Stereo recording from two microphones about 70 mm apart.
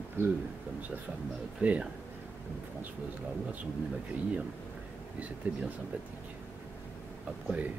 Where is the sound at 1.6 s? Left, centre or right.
Right.